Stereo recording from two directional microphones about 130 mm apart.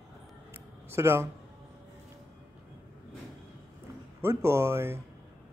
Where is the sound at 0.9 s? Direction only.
20° right (ahead or behind).